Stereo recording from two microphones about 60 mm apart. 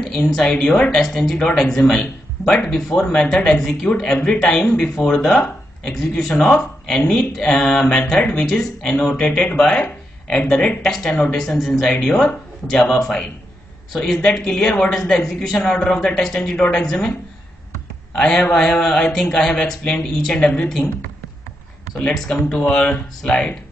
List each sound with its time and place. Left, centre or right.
0.0 s speech: centre
3.0 s speech: centre
10.8 s speech: centre
18.1 s speech: centre
20.3 s speech: centre
21.9 s speech: centre